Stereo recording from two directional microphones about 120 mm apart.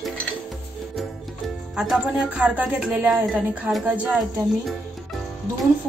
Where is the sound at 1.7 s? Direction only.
5° right (ahead or behind).